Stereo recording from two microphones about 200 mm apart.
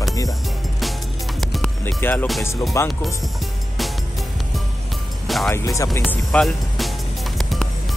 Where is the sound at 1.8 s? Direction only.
10° left (ahead or behind).